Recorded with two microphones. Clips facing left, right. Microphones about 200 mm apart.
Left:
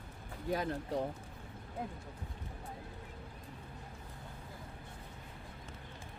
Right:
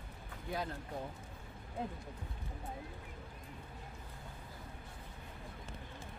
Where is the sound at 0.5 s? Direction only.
65° left (ahead or behind).